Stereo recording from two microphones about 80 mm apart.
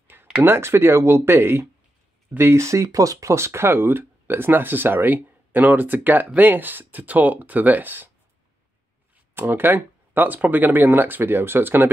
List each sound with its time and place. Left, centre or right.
0.1 s speech: right
9.3 s speech: right